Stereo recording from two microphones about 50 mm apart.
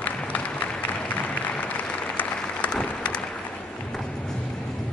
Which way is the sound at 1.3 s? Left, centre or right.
Left.